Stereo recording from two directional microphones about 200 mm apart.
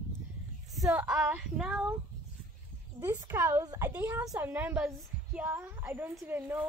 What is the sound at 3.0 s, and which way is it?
A woman's voice, 10° right (ahead or behind).